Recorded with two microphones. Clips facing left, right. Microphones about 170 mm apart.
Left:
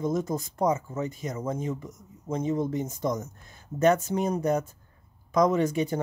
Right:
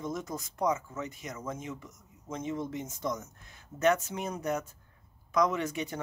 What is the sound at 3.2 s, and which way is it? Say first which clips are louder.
Speech: left 8 dB; 35° left (ahead or behind).